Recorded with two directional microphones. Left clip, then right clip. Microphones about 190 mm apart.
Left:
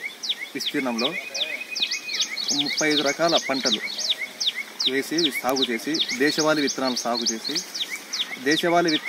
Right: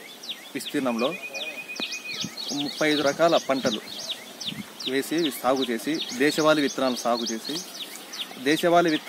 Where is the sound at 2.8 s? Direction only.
5° right (ahead or behind).